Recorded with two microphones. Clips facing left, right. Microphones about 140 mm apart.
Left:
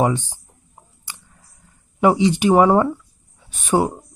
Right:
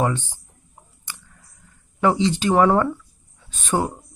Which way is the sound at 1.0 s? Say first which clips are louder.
Even; 15° left (ahead or behind).